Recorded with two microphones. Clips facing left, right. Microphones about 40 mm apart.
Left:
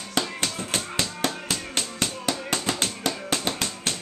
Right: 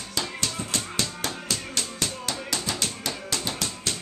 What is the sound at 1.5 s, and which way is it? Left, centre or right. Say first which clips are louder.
Music: left 1 dB; left.